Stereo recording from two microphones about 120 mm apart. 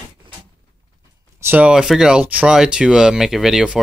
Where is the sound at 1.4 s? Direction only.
15° right (ahead or behind).